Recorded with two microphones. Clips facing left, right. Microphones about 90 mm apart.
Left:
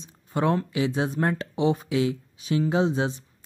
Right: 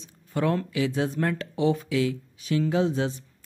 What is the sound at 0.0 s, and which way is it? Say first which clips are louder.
Speech: left 1 dB; 20° left (ahead or behind).